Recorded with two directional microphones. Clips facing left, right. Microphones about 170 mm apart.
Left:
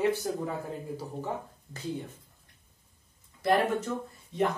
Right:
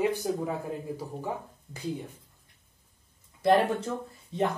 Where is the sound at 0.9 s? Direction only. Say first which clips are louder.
Even; 10° right (ahead or behind).